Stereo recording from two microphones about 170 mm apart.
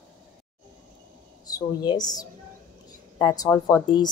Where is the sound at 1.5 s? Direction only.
25° left (ahead or behind).